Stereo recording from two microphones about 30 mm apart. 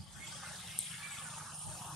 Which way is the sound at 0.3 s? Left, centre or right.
Centre.